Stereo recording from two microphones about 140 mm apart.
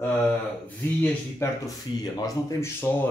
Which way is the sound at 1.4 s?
20° left (ahead or behind).